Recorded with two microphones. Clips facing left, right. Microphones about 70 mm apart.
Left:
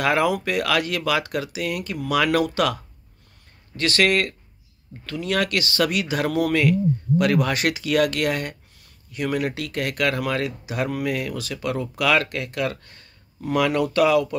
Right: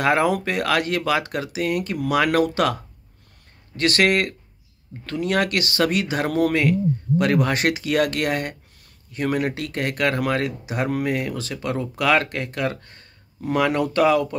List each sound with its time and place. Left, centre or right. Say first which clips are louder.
0.0 s speech: right 1 dB; right